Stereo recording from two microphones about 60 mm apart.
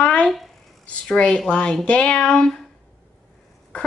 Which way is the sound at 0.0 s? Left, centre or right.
Centre.